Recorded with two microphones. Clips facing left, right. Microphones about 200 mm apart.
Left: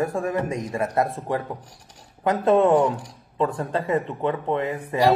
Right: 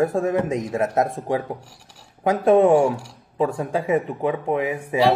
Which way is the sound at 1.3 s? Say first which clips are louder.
Right 3 dB; 10° right (ahead or behind).